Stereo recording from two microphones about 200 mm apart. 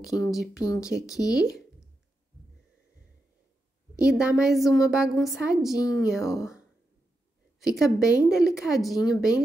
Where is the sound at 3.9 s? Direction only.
5° right (ahead or behind).